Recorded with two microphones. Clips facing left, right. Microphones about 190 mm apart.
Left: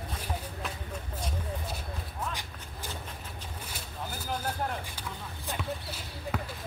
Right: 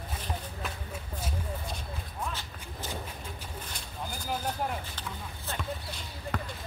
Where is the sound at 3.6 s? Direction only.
5° left (ahead or behind).